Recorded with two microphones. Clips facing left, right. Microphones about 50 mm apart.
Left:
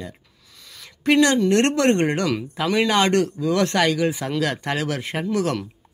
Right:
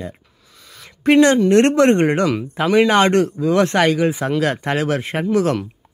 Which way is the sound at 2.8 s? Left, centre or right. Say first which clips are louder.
Right 4 dB; right.